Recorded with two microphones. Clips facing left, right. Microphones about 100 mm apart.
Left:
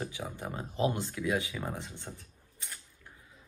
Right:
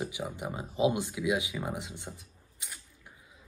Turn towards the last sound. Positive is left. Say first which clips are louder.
# even
turn(degrees=-15)  # may be behind; listen again after turning